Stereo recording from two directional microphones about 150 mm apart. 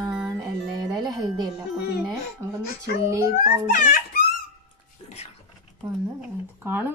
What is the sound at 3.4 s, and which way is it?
Speech, 70° left (ahead or behind).